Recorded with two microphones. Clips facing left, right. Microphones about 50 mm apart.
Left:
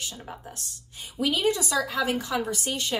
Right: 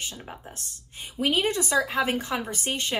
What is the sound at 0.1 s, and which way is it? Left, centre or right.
A woman's voice, right.